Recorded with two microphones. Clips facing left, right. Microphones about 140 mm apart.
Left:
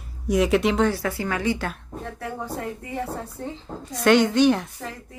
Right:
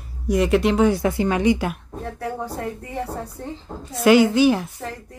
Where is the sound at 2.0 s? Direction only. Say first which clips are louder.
Right 4 dB; centre (ahead or behind).